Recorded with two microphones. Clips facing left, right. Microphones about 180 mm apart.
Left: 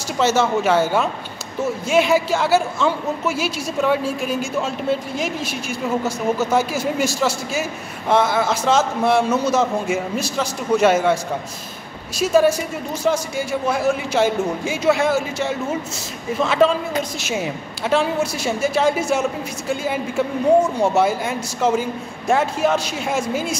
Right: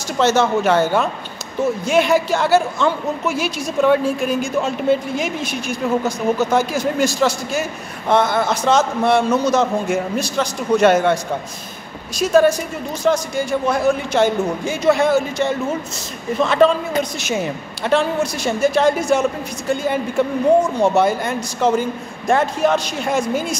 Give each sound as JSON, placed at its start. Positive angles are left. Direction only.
{"t": 0.2, "sound": "a woman's voice", "side_deg": 5}
{"t": 12.2, "sound": "a woman's voice", "side_deg": 5}